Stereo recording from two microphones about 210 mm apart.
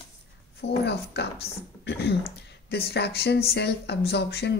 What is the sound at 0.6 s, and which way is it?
Speech, 50° left (ahead or behind).